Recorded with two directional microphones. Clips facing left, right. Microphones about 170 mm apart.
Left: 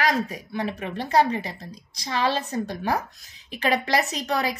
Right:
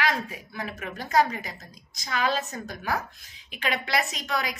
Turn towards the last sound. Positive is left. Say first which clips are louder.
# left 5 dB
turn(degrees=35)  # may be behind; listen again after turning